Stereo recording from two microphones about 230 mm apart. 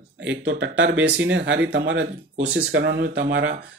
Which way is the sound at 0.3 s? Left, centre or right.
Right.